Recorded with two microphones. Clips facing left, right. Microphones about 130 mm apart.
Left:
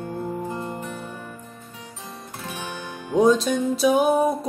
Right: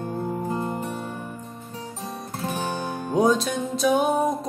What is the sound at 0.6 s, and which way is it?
Music, 30° right (ahead or behind).